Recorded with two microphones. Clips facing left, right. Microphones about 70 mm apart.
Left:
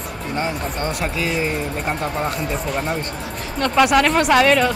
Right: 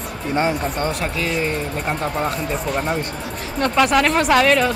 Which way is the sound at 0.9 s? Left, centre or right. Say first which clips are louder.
Even; centre.